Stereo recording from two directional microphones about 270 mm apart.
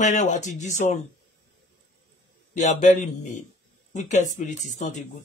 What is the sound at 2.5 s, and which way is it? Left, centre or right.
Speech, left.